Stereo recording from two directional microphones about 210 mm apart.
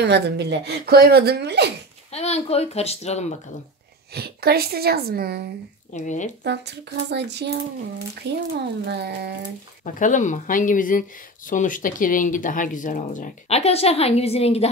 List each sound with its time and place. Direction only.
0.0 s speech: 55° right (ahead or behind)
2.0 s speech: 30° left (ahead or behind)
4.1 s speech: 50° right (ahead or behind)
5.9 s speech: 35° left (ahead or behind)
6.4 s speech: 55° right (ahead or behind)
9.9 s speech: 35° left (ahead or behind)